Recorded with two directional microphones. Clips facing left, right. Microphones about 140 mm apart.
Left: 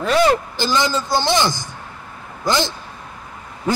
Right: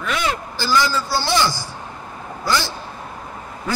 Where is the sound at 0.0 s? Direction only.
40° left (ahead or behind).